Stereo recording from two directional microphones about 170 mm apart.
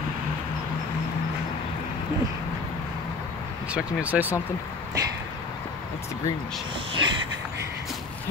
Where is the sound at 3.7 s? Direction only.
10° right (ahead or behind).